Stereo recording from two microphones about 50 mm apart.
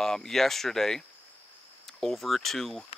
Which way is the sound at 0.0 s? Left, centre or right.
Centre.